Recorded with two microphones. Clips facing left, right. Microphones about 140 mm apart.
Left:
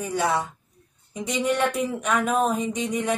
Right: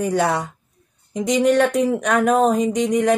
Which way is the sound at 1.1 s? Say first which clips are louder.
Right 8 dB; 80° right.